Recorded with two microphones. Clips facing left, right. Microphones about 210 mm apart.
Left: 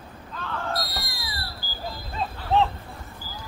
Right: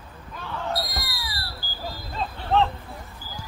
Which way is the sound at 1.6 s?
50° right (ahead or behind).